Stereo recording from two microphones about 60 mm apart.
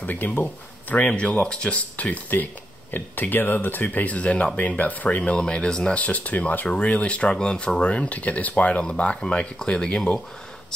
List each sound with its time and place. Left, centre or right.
0.0 s speech: left
5.4 s speech: centre
5.9 s speech: left